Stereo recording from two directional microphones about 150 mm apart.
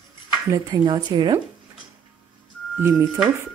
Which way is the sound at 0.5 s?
25° right (ahead or behind).